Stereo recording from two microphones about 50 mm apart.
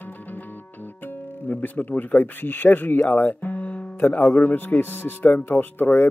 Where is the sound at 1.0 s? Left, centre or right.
Left.